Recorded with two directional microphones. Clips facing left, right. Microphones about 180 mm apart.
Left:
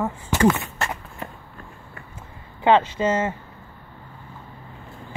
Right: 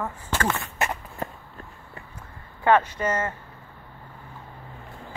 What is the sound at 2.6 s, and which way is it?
Speech, 25° left (ahead or behind).